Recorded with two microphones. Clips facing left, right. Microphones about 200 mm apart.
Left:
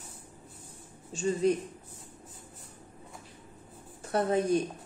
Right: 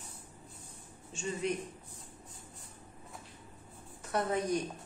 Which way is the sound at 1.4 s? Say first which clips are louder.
Left 8 dB; 35° left (ahead or behind).